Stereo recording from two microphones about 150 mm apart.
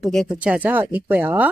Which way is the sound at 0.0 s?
Centre (ahead or behind).